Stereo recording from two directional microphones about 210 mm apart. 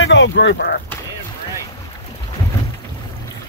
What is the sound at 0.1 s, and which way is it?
Speech, 55° left (ahead or behind).